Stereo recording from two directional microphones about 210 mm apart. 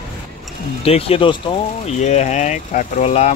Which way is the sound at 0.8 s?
25° left (ahead or behind).